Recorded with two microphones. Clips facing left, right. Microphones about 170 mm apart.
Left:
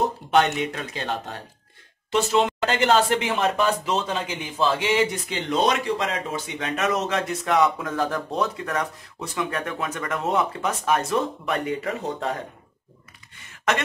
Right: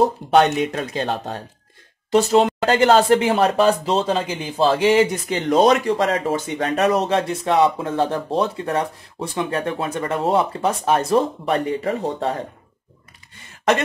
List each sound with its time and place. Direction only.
0.3 s speech: 35° right (ahead or behind)